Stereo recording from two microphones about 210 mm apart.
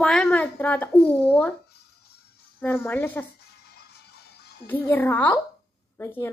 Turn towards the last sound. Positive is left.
turn(degrees=10)  # may be behind; listen again after turning